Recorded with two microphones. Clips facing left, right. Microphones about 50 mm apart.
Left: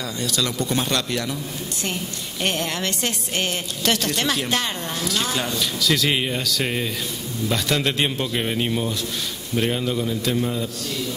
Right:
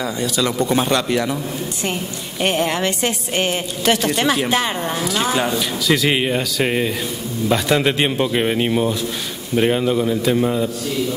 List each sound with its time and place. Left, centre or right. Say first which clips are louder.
0.0 s a woman's voice: right 5 dB; centre
2.4 s a woman's voice: right 6 dB; centre